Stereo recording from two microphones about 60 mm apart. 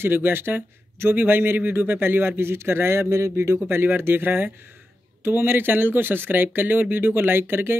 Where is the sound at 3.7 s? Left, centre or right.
Right.